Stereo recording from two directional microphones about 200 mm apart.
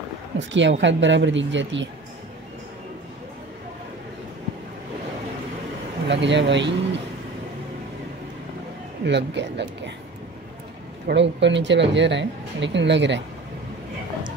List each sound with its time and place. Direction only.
0.4 s speech: 65° right (ahead or behind)
6.0 s speech: 60° right (ahead or behind)
9.0 s speech: 60° right (ahead or behind)
11.1 s speech: 60° right (ahead or behind)